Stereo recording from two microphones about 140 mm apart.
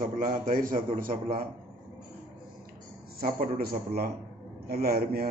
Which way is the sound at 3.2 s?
90° right.